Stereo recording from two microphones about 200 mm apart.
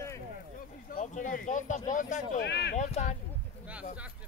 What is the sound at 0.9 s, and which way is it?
Speech, 40° left (ahead or behind).